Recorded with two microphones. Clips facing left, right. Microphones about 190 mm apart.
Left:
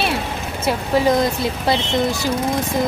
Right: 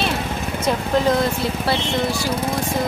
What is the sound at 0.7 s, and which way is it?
Speech, 10° left (ahead or behind).